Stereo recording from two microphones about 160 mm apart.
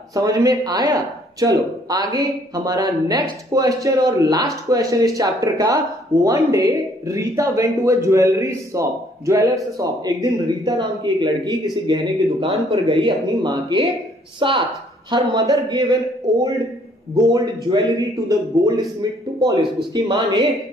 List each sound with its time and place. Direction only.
0.1 s speech: 20° right (ahead or behind)